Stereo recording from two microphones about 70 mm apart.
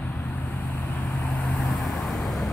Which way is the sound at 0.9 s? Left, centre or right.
Centre.